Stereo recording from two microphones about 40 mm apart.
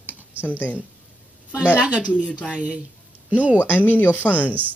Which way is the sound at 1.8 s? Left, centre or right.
Right.